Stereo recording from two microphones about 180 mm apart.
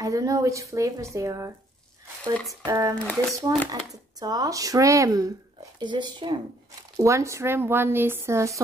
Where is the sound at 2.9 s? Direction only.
5° left (ahead or behind).